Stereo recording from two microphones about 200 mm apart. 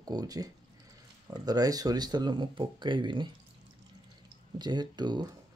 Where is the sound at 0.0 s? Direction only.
20° right (ahead or behind).